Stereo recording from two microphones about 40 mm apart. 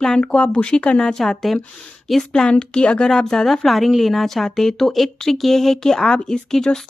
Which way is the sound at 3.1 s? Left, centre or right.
Centre.